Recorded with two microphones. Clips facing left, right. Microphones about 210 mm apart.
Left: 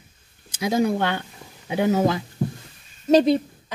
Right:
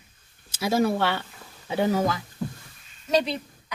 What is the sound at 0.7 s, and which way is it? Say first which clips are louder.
Speech: left 1 dB; 15° left (ahead or behind).